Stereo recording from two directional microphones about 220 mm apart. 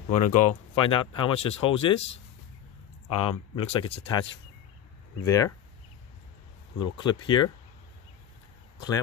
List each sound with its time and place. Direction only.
0.1 s speech: 35° left (ahead or behind)
3.1 s speech: 25° left (ahead or behind)
5.2 s speech: 15° left (ahead or behind)
6.8 s speech: 20° left (ahead or behind)